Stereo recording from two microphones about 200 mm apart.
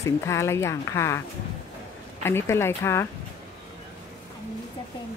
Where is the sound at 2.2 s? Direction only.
10° left (ahead or behind).